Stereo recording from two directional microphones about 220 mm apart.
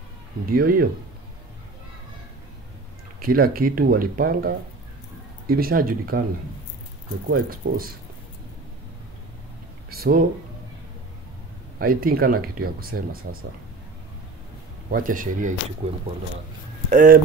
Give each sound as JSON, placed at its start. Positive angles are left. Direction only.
{"t": 0.5, "sound": "speech", "side_deg": -40}
{"t": 3.2, "sound": "speech", "side_deg": -40}
{"t": 7.2, "sound": "speech", "side_deg": -40}
{"t": 9.8, "sound": "speech", "side_deg": -45}
{"t": 11.8, "sound": "speech", "side_deg": -40}
{"t": 14.9, "sound": "speech", "side_deg": -40}